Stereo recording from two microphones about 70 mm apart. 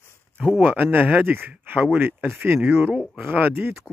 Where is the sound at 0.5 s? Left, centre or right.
Right.